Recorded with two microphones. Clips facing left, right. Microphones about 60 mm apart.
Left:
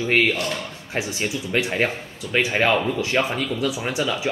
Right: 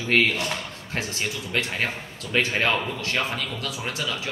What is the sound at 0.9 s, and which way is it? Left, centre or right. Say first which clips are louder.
Speech: left 4 dB; centre.